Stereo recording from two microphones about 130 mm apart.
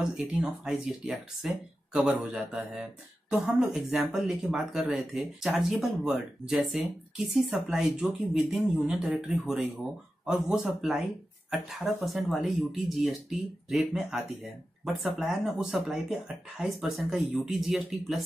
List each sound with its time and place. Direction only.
0.0 s speech: 5° right (ahead or behind)